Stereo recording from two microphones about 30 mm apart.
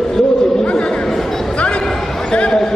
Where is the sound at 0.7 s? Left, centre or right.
Left.